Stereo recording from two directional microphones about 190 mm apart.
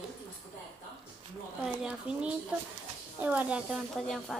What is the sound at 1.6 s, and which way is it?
A woman's voice, 5° right (ahead or behind).